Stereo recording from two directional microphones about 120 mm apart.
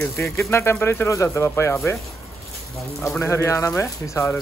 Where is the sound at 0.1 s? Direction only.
25° left (ahead or behind).